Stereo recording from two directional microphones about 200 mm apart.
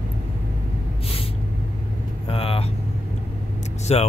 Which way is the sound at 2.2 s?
30° left (ahead or behind).